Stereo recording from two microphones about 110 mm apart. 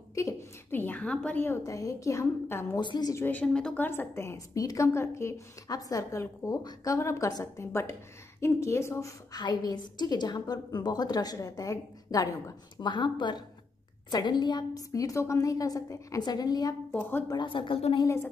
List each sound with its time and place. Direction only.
0.1 s a sound: 30° left (ahead or behind)
1.6 s a woman's voice: 30° left (ahead or behind)
2.8 s speech: 45° left (ahead or behind)
3.3 s a woman's voice: 10° left (ahead or behind)
3.8 s a woman's voice: 20° left (ahead or behind)
9.4 s a woman's voice: 40° left (ahead or behind)
12.7 s a woman's voice: 45° left (ahead or behind)
16.9 s a woman's voice: 15° left (ahead or behind)
17.3 s speech: 45° left (ahead or behind)
18.0 s a woman's voice: 25° left (ahead or behind)